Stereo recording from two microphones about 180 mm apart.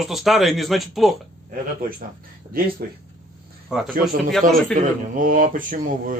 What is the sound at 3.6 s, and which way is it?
Speech, centre (ahead or behind).